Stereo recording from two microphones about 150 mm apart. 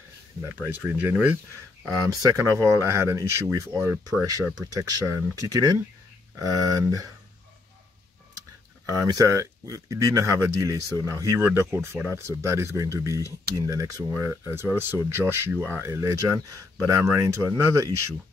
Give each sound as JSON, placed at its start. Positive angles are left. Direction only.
{"t": 0.7, "sound": "speech", "side_deg": -15}
{"t": 1.9, "sound": "speech", "side_deg": -25}
{"t": 8.8, "sound": "speech", "side_deg": -25}